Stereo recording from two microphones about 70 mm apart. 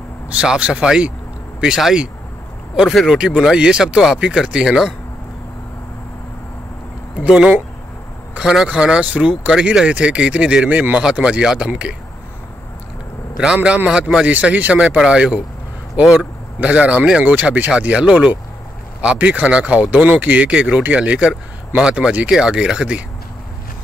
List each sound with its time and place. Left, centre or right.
0.4 s speech: centre
7.2 s speech: centre
13.4 s speech: centre